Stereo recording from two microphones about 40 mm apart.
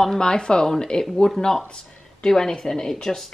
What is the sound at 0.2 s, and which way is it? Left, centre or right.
Speech, centre.